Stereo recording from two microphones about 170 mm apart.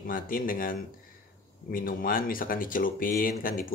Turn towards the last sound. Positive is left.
turn(degrees=55)  # may be behind; listen again after turning